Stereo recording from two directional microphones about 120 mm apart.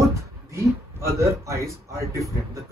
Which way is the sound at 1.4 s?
25° right (ahead or behind).